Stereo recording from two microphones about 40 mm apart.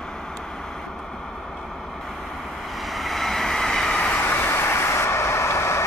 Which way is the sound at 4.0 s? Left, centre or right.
Left.